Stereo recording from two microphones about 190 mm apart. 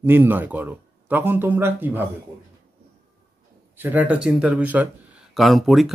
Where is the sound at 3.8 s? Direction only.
10° right (ahead or behind).